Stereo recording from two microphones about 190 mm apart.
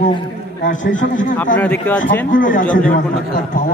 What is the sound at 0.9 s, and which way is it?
Speech, 45° left (ahead or behind).